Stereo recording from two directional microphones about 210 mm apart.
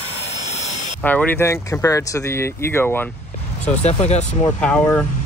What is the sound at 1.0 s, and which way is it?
Speech, 5° left (ahead or behind).